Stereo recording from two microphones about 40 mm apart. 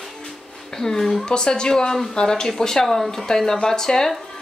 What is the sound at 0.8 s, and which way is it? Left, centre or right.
Speech, centre.